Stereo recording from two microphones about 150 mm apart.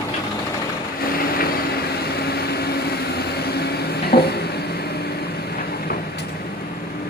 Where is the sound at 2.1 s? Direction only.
90° left.